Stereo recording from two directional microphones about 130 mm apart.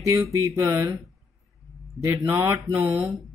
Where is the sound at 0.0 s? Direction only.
25° right (ahead or behind).